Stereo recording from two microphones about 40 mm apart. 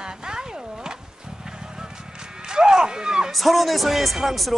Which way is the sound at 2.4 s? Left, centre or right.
Centre.